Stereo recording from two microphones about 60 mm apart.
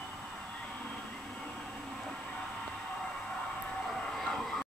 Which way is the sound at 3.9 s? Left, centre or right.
Centre.